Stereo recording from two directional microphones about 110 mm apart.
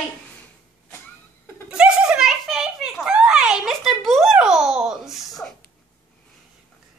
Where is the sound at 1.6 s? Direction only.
10° right (ahead or behind).